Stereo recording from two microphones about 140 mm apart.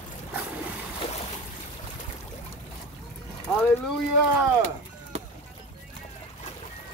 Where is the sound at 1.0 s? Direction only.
45° left (ahead or behind).